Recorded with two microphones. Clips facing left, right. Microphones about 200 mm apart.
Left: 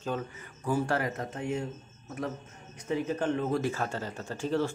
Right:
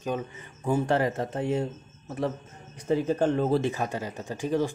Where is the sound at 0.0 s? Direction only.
20° right (ahead or behind).